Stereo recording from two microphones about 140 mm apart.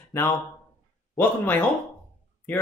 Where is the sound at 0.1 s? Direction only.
20° left (ahead or behind).